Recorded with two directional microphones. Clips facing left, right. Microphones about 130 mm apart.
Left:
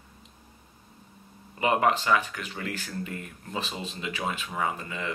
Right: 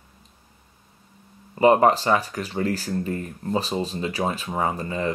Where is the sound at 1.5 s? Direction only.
35° right (ahead or behind).